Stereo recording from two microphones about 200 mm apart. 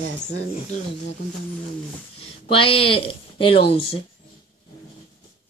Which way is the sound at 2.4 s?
25° left (ahead or behind).